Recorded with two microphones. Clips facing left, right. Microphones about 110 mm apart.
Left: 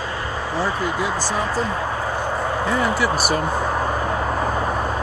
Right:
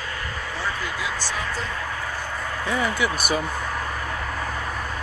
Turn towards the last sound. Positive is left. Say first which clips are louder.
# left 8 dB
turn(degrees=40)  # may be behind; listen again after turning